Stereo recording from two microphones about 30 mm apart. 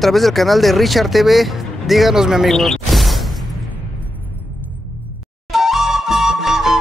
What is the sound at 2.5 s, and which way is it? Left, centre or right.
Speech, centre.